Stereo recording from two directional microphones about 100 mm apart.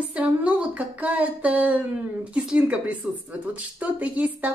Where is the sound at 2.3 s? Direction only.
10° right (ahead or behind).